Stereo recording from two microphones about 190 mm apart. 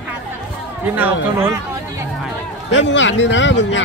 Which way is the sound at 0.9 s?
10° right (ahead or behind).